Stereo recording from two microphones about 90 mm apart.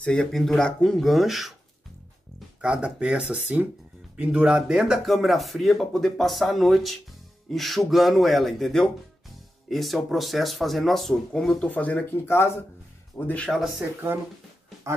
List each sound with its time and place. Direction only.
0.0 s speech: 10° left (ahead or behind)
2.6 s speech: 10° right (ahead or behind); by 12.5 s 30° left (ahead or behind)
13.2 s speech: 40° left (ahead or behind)